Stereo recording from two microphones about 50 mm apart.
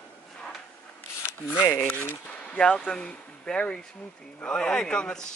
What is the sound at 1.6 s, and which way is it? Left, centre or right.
Speech, left.